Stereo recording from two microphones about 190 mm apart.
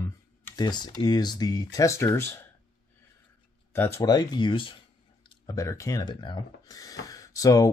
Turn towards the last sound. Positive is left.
turn(degrees=20)  # may be behind; listen again after turning